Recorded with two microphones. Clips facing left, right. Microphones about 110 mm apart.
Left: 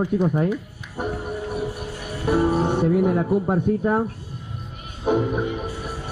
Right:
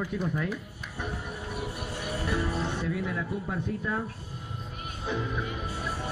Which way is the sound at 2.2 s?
50° left (ahead or behind).